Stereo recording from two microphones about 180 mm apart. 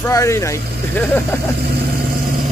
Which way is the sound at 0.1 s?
20° left (ahead or behind).